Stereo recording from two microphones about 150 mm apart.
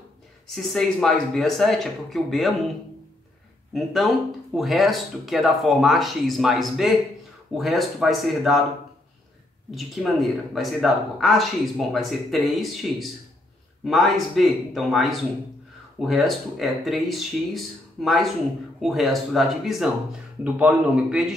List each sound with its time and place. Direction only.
0.5 s speech: centre (ahead or behind)
3.7 s speech: centre (ahead or behind)
9.8 s speech: centre (ahead or behind)